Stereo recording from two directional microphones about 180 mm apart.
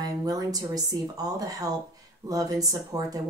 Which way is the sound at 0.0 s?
20° right (ahead or behind).